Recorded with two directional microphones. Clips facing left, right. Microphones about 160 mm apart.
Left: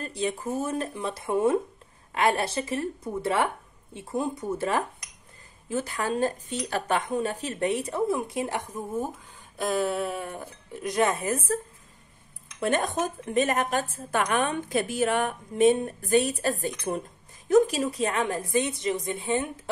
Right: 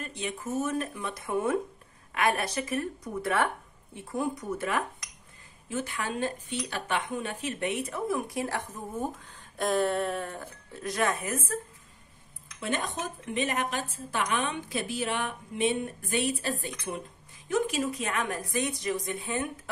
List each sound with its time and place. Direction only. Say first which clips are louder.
0.0 s speech: left 6 dB; 35° left (ahead or behind)
12.5 s a woman's voice: left 7 dB; 50° left (ahead or behind); by 19.7 s 25° left (ahead or behind)